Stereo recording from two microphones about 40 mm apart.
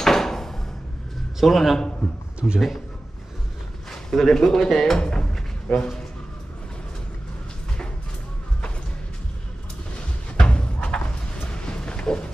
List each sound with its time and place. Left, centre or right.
0.0 s a sound: centre
1.4 s a man's voice: centre
2.4 s a man's voice: left
3.9 s speech: centre
10.3 s music: left